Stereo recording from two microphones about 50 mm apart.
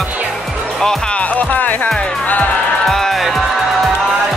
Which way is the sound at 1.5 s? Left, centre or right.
Left.